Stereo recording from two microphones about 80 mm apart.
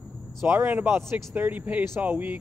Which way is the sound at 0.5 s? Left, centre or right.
Right.